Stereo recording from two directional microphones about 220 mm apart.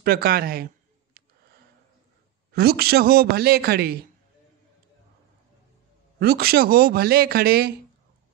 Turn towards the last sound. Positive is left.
turn(degrees=-45)  # may be behind; listen again after turning